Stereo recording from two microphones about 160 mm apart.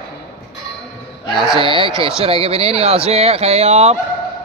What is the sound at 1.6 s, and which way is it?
A man's voice, 35° right (ahead or behind).